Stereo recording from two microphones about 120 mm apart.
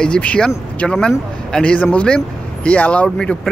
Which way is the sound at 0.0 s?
10° left (ahead or behind).